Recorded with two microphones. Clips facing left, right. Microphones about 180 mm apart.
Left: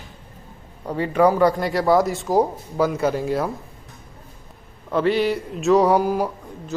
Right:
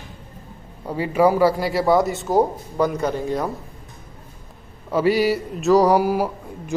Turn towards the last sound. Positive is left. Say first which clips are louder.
# right 1 dB
turn(degrees=-10)  # may be behind; listen again after turning